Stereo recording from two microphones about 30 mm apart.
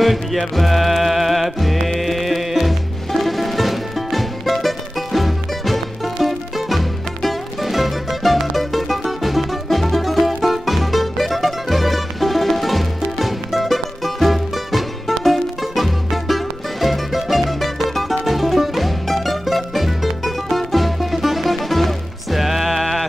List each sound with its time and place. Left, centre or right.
0.0 s music: centre